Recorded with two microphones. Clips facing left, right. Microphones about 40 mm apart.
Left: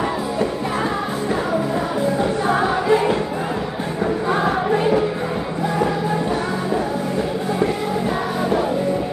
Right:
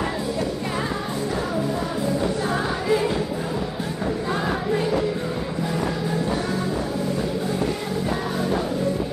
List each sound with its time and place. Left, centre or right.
2.4 s music: left
4.3 s music: left